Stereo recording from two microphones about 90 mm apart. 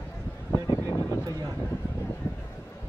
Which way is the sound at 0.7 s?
35° left (ahead or behind).